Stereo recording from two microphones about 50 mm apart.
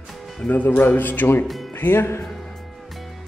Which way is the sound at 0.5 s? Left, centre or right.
Left.